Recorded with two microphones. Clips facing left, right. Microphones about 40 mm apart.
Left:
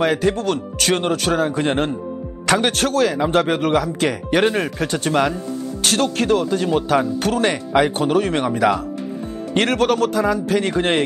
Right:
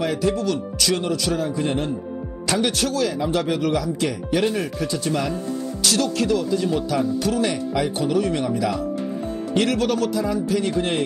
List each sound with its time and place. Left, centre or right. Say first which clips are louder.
0.0 s speech: left 4 dB; left